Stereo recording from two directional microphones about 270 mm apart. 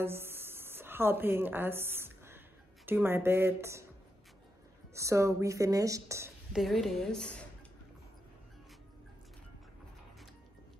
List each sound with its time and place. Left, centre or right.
0.0 s a sound: centre
2.9 s a woman's voice: centre
4.9 s a woman's voice: centre